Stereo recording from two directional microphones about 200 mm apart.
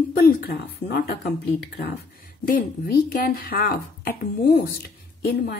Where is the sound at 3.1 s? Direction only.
50° left (ahead or behind).